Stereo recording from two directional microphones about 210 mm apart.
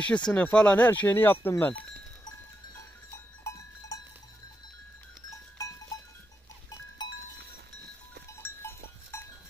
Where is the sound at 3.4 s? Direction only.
15° left (ahead or behind).